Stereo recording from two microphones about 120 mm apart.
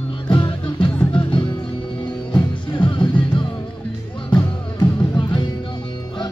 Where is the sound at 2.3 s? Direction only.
40° left (ahead or behind).